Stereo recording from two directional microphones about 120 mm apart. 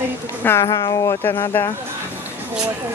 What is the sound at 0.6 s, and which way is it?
Speech, 30° left (ahead or behind).